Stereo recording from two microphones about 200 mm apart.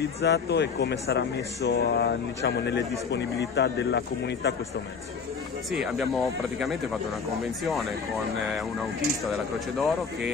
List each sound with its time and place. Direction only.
0.0 s a man's voice: 55° left (ahead or behind)
5.7 s speech: centre (ahead or behind)